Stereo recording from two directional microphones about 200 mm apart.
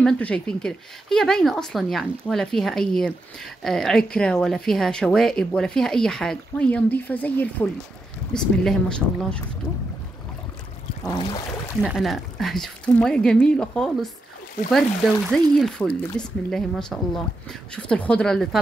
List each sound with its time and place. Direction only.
0.0 s speech: 5° left (ahead or behind)
11.1 s a sound: 20° left (ahead or behind)
11.8 s speech: centre (ahead or behind)
15.3 s speech: 5° left (ahead or behind)